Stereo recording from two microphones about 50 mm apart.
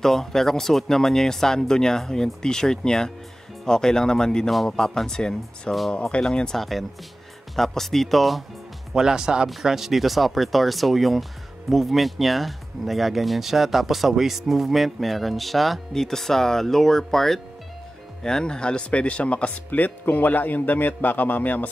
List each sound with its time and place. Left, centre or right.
0.0 s speech: centre
6.6 s speech: centre
8.9 s speech: centre; by 21.6 s left